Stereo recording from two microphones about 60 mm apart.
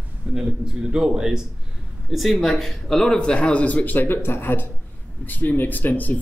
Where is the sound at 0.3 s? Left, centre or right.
Centre.